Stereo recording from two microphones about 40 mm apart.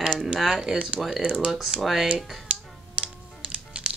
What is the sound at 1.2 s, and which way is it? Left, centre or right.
Speech, right.